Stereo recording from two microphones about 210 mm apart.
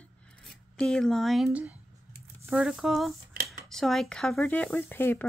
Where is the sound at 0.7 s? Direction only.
5° left (ahead or behind).